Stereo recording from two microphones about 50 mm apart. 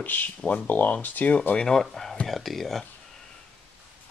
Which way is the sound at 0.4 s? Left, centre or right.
Left.